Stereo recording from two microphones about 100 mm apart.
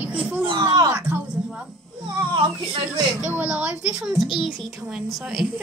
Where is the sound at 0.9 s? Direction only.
20° right (ahead or behind).